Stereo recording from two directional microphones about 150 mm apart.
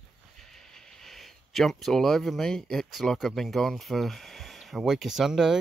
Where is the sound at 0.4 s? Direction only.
Centre (ahead or behind).